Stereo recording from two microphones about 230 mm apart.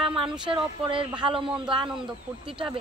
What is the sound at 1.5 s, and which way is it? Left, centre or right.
Speech, centre.